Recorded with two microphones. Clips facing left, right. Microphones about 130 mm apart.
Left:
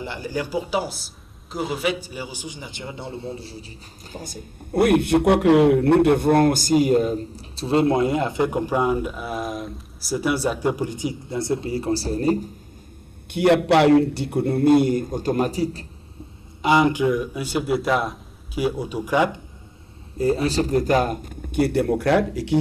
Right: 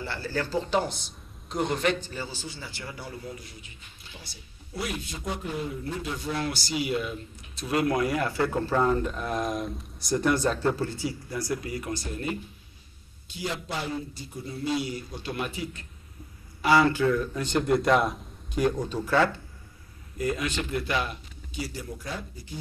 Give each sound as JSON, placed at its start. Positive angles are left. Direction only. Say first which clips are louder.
{"t": 0.0, "sound": "a man's voice", "louder": "left 3 dB", "side_deg": 15}
{"t": 13.3, "sound": "a man's voice", "louder": "left 17 dB", "side_deg": 65}
{"t": 16.6, "sound": "a man's voice", "louder": "left 3 dB", "side_deg": 20}
{"t": 20.2, "sound": "a man's voice", "louder": "left 9 dB", "side_deg": 35}